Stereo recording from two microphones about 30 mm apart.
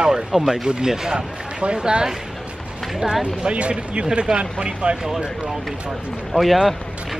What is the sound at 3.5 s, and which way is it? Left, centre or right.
Speech, right.